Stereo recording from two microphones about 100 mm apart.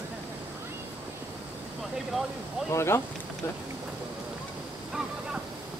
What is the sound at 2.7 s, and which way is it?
Speech, 25° left (ahead or behind).